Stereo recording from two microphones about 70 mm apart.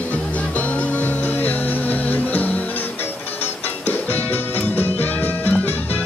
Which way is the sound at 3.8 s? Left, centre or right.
Left.